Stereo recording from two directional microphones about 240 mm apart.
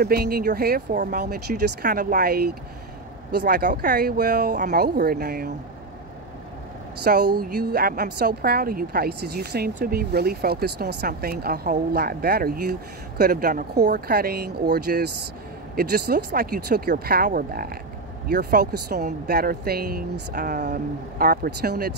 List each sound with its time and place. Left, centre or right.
0.0 s a woman's voice: right
7.3 s a woman's voice: right